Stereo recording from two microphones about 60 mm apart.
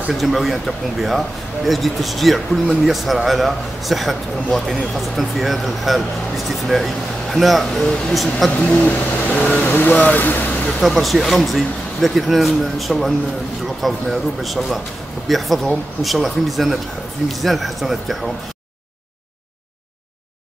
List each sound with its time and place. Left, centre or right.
0.1 s speech: centre
8.5 s speech: left
10.8 s speech: centre